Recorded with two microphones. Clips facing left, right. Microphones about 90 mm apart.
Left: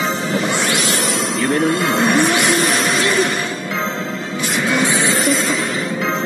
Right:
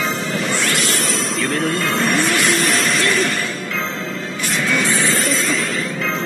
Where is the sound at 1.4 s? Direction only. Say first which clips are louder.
Left 5 dB; 15° left (ahead or behind).